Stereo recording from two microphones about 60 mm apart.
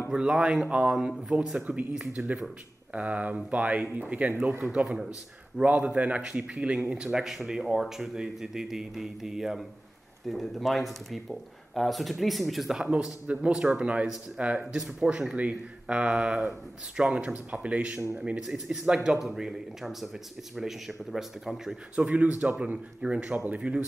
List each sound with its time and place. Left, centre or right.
0.1 s speech: centre; by 4.6 s right
4.7 s speech: centre
12.9 s speech: centre
22.0 s speech: right